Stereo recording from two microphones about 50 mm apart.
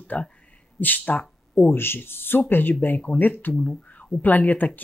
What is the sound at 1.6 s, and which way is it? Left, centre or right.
Speech, left.